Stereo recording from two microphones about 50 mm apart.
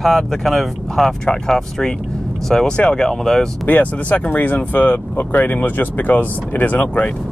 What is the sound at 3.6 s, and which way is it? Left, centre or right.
Speech, left.